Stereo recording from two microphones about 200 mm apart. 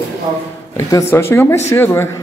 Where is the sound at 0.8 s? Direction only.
15° left (ahead or behind).